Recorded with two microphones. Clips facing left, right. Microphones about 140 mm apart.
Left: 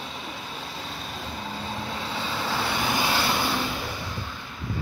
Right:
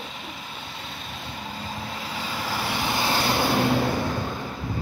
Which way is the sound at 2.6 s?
15° right (ahead or behind).